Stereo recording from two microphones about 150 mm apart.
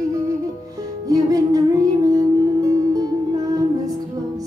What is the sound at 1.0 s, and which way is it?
Music, 25° right (ahead or behind).